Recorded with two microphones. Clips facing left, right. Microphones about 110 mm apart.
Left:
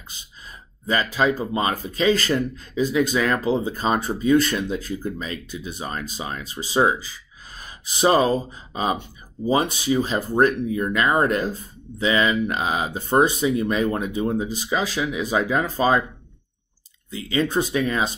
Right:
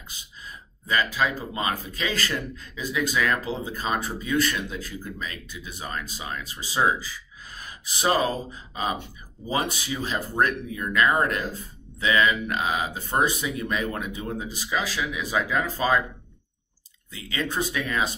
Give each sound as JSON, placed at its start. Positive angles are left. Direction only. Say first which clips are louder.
{"t": 0.8, "sound": "speech", "louder": "left 4 dB", "side_deg": 30}
{"t": 7.5, "sound": "gasp", "louder": "left 1 dB", "side_deg": 25}
{"t": 9.9, "sound": "speech", "louder": "left 5 dB", "side_deg": 30}
{"t": 17.1, "sound": "speech", "louder": "left 7 dB", "side_deg": 30}